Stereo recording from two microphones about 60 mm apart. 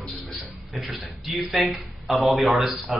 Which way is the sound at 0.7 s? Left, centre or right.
Centre.